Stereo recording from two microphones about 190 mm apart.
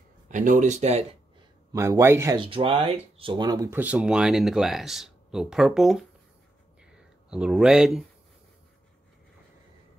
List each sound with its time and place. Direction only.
0.3 s speech: 40° right (ahead or behind)
1.7 s a man's voice: 15° right (ahead or behind)
2.3 s speech: 25° right (ahead or behind); by 6.0 s centre (ahead or behind)
6.8 s a sound: 5° right (ahead or behind)